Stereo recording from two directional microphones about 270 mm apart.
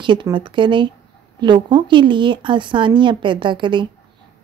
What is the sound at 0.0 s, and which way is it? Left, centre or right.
A woman's voice, centre.